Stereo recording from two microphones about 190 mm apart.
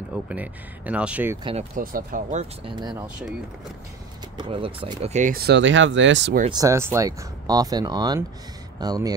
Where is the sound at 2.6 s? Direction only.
25° right (ahead or behind).